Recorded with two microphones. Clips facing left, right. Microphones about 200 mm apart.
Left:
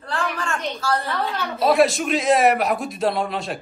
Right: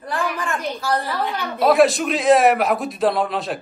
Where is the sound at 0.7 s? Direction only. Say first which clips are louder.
Even; 15° right (ahead or behind).